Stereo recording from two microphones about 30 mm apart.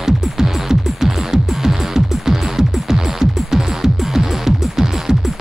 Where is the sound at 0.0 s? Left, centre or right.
Centre.